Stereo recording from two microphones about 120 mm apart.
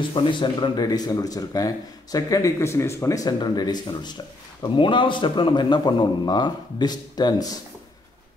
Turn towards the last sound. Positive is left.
turn(degrees=35)  # may be behind; listen again after turning